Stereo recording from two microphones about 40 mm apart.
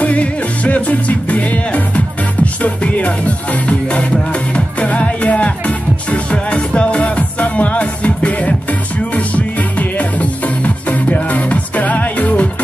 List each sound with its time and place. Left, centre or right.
0.0 s music: left